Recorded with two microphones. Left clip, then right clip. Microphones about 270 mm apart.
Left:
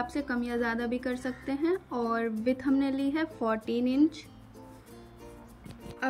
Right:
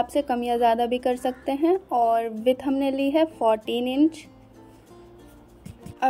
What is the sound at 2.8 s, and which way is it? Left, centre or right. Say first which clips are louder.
Speech: right 8 dB; right.